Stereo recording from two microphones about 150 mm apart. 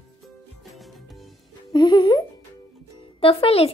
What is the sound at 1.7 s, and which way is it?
Speech, 30° left (ahead or behind).